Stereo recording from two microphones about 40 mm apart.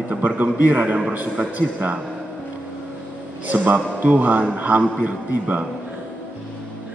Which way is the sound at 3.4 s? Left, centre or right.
Right.